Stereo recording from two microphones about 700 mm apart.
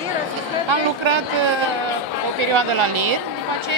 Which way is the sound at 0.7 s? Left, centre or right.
Right.